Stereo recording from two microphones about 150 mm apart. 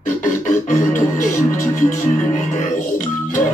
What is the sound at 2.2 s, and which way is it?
Music, 55° left (ahead or behind).